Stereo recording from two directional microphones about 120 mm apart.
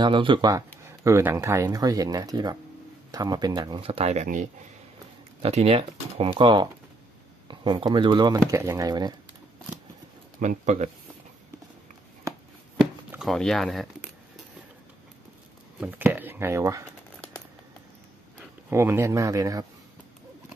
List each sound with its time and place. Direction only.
0.0 s speech: 45° right (ahead or behind)
0.8 s speech: 20° right (ahead or behind); by 4.5 s 80° right
5.4 s speech: 55° right (ahead or behind)
6.3 s speech: 40° right (ahead or behind)
10.4 s speech: 80° right
13.2 s speech: centre (ahead or behind)
15.8 s speech: 15° right (ahead or behind)
18.7 s speech: 20° right (ahead or behind)